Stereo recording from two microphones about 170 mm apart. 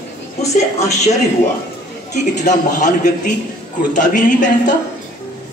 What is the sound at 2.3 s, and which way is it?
A child's voice, 45° left (ahead or behind).